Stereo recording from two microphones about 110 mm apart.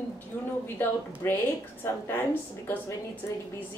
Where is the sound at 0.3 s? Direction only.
10° left (ahead or behind); by 3.4 s 30° left (ahead or behind).